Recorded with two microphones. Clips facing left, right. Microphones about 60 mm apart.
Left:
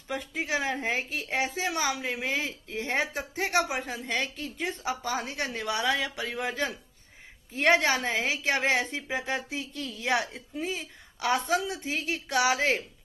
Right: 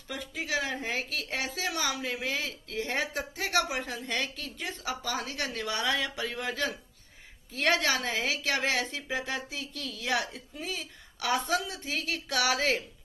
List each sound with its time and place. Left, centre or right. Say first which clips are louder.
0.1 s a woman's voice: left 3 dB; left